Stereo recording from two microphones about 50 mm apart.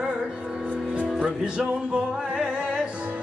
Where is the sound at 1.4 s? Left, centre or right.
Centre.